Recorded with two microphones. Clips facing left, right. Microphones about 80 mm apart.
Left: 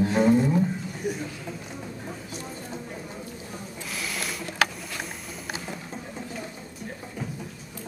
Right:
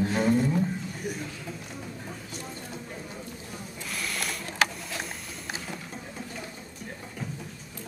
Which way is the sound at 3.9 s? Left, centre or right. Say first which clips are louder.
Even; centre.